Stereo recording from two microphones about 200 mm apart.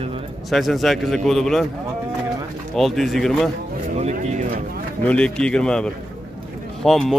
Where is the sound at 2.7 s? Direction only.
Centre (ahead or behind).